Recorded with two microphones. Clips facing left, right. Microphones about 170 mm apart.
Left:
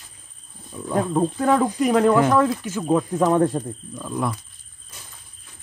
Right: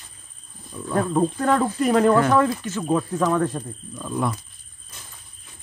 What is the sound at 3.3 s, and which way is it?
Speech, 30° left (ahead or behind).